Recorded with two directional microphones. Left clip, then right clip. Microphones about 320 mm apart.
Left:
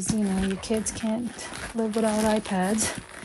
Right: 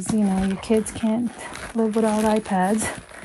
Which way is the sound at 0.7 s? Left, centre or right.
Right.